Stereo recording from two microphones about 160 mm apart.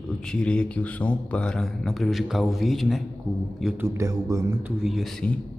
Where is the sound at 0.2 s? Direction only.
5° left (ahead or behind).